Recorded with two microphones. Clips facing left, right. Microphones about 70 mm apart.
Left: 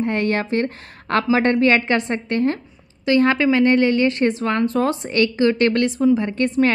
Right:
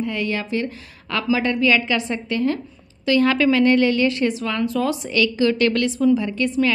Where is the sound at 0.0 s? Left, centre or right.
Left.